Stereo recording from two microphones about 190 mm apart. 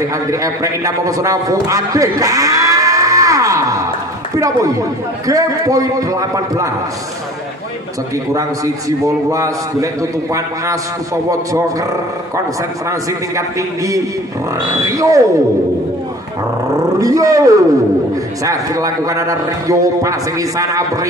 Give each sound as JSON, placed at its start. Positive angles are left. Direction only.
{"t": 0.1, "sound": "a man's voice", "side_deg": -15}
{"t": 8.3, "sound": "a man's voice", "side_deg": -15}
{"t": 13.4, "sound": "a man's voice", "side_deg": -15}
{"t": 17.0, "sound": "a man's voice", "side_deg": -15}